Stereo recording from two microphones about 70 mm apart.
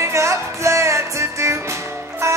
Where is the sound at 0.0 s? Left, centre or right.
Right.